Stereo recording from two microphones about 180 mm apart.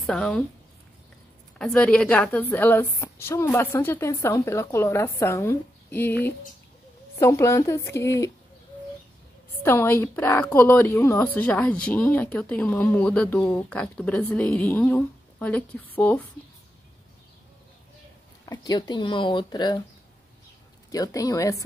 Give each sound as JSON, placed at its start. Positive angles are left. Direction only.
{"t": 0.0, "sound": "a woman's voice", "side_deg": 5}
{"t": 1.6, "sound": "a woman's voice", "side_deg": 5}
{"t": 9.6, "sound": "a woman's voice", "side_deg": 10}
{"t": 18.4, "sound": "speech", "side_deg": 20}
{"t": 20.9, "sound": "speech", "side_deg": 20}